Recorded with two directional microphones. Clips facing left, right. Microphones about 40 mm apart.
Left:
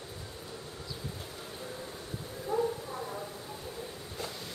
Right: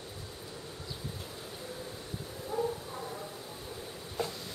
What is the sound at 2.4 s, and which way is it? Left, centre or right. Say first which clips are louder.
Bow-wow: left 3 dB; centre.